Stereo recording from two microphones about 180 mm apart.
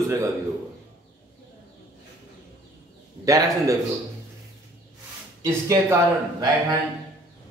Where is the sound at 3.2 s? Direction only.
20° right (ahead or behind).